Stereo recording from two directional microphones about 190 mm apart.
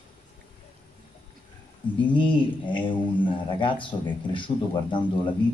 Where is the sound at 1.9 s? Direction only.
25° left (ahead or behind).